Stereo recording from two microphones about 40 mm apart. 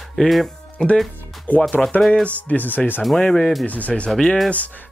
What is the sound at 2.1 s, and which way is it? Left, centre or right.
Speech, left.